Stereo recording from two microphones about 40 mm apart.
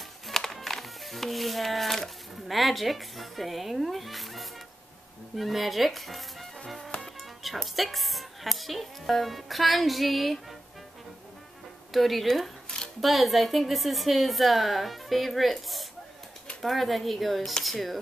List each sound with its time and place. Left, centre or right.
0.3 s music: centre
5.3 s a woman's voice: centre
7.7 s a woman's voice: centre
11.9 s a woman's voice: centre
12.6 s a sound: centre
13.0 s a woman's voice: centre